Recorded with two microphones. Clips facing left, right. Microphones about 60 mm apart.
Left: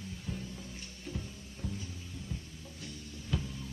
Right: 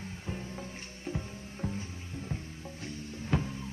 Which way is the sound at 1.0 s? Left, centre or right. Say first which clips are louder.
Right 5 dB; right.